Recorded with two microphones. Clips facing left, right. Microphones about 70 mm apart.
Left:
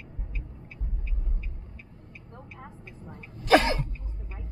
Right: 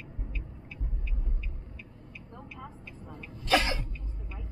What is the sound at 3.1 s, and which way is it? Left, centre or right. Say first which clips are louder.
Sneeze: left 6 dB; left.